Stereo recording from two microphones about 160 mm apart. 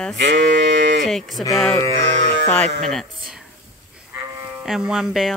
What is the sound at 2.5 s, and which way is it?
Speech, 5° left (ahead or behind).